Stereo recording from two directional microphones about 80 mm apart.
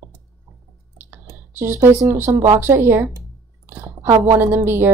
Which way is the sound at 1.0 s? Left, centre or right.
Right.